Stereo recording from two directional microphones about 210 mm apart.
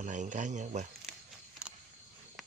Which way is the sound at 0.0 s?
35° right (ahead or behind).